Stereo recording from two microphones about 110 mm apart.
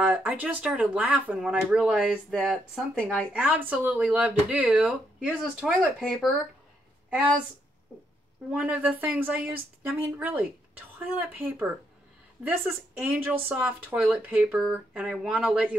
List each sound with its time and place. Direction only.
0.0 s speech: 15° right (ahead or behind)
8.5 s speech: 15° right (ahead or behind)